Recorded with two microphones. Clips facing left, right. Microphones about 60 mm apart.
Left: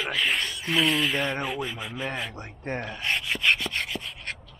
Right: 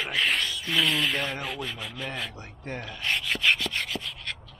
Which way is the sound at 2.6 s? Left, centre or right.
Left.